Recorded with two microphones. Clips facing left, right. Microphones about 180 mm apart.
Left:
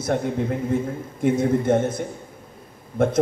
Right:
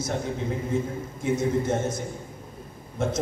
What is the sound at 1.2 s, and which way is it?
Speech, 55° left (ahead or behind).